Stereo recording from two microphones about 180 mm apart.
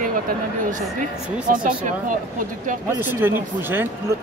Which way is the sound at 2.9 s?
10° right (ahead or behind).